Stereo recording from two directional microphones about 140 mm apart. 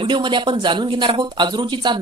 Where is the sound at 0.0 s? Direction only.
35° right (ahead or behind).